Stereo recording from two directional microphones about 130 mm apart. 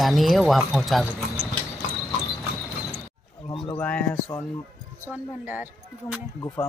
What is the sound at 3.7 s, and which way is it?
Speech, 10° left (ahead or behind).